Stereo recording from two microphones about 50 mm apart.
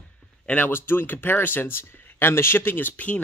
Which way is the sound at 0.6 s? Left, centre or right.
Left.